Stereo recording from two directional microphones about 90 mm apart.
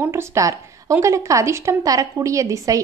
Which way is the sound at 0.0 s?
30° right (ahead or behind).